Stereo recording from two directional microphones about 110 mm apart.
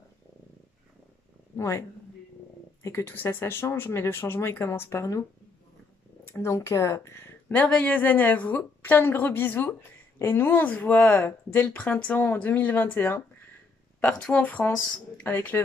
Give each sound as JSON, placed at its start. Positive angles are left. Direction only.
{"t": 1.6, "sound": "speech", "side_deg": 25}
{"t": 6.2, "sound": "speech", "side_deg": 25}